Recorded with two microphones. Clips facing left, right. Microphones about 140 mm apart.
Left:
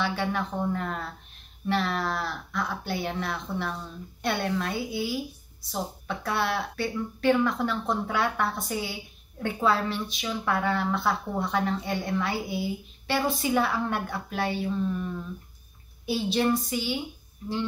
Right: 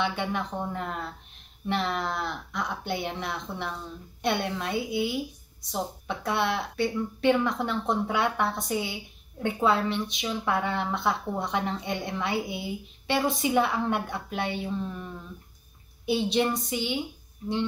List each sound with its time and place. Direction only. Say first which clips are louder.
0.0 s a woman's voice: left 1 dB; 20° right (ahead or behind)
16.1 s a woman's voice: even; 20° right (ahead or behind)